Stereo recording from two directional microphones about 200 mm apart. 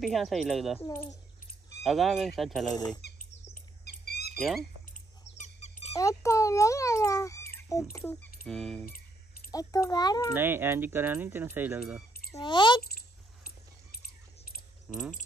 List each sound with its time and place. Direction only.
0.0 s speech: centre (ahead or behind)
0.7 s a child's voice: 10° left (ahead or behind)
1.8 s speech: centre (ahead or behind)
2.7 s speech: 20° left (ahead or behind)
3.8 s bird: 55° left (ahead or behind)
5.4 s dog: 35° left (ahead or behind)
5.9 s a child's voice: 15° left (ahead or behind)
9.5 s a child's voice: 15° left (ahead or behind)
10.3 s speech: 10° right (ahead or behind)
12.4 s speech: 25° left (ahead or behind)
12.8 s a sound: 50° left (ahead or behind)
14.9 s a sound: 5° right (ahead or behind)